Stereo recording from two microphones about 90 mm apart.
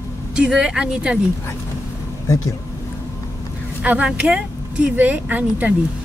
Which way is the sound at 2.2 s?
35° left (ahead or behind).